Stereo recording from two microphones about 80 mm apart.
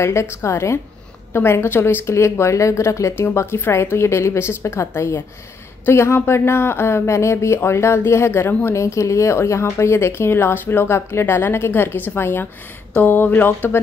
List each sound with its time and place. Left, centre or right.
0.0 s a woman's voice: left